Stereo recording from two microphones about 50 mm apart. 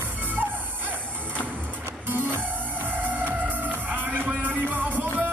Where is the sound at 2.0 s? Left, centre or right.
Right.